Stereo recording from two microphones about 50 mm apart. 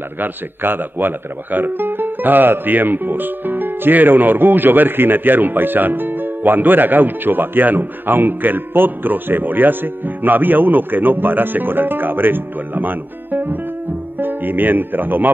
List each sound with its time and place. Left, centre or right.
0.2 s speech: right